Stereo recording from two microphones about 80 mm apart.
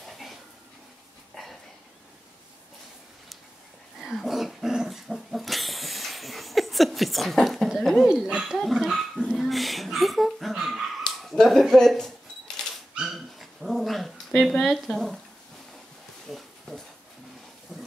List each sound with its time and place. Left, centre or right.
0.0 s a sound: centre
4.0 s dog: centre
8.1 s speech: centre
8.5 s dog: centre
11.6 s camera: centre
12.9 s dog: centre
16.3 s a sound: centre